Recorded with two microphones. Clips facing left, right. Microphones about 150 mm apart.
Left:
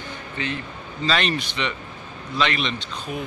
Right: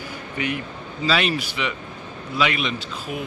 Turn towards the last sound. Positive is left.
turn(degrees=-5)  # may be behind; listen again after turning